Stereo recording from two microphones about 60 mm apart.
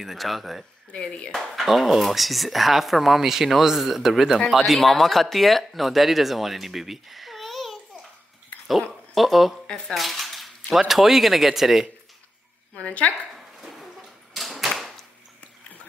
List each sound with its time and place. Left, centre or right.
0.0 s speech: centre
0.9 s speech: centre
1.3 s speech: centre
9.9 s cutlery: centre
10.8 s speech: centre
12.7 s speech: left
13.3 s dog: centre
14.3 s a sound: centre